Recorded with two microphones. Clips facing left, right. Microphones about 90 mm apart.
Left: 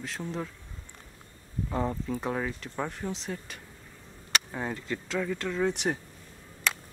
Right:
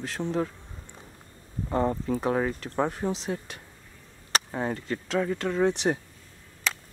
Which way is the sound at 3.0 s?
30° right (ahead or behind).